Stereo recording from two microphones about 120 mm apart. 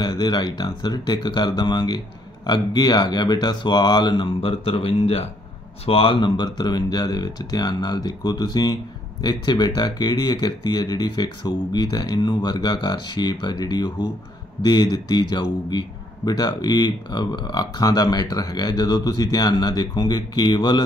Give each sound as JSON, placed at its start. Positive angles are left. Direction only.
{"t": 0.0, "sound": "speech", "side_deg": 35}